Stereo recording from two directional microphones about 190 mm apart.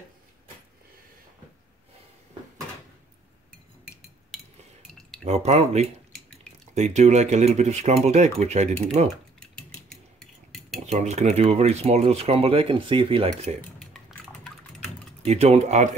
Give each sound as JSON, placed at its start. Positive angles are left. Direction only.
{"t": 4.3, "sound": "chink", "side_deg": 5}
{"t": 5.2, "sound": "speech", "side_deg": -35}
{"t": 10.9, "sound": "speech", "side_deg": -35}
{"t": 13.7, "sound": "drip", "side_deg": 0}
{"t": 15.2, "sound": "speech", "side_deg": -35}